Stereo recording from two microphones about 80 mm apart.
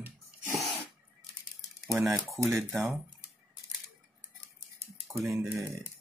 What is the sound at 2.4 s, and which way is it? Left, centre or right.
Speech, right.